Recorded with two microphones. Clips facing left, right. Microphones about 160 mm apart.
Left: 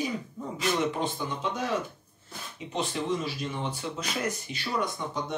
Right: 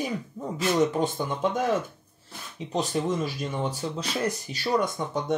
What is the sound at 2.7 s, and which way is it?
Speech, 45° right (ahead or behind).